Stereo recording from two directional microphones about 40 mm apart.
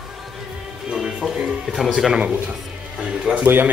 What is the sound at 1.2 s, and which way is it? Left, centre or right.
Speech, centre.